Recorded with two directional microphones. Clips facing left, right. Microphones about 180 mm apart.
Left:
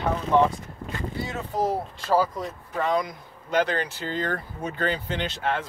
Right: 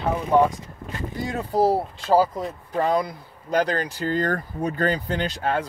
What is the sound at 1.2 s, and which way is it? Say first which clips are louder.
Speech: right 7 dB; 40° right (ahead or behind).